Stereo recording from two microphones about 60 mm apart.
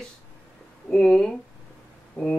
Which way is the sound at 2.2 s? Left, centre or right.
Left.